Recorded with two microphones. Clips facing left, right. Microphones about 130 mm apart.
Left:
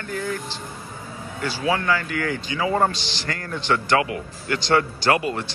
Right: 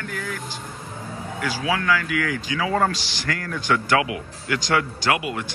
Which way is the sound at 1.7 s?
90° right.